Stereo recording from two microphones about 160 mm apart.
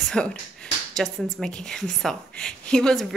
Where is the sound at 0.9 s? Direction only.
Centre (ahead or behind).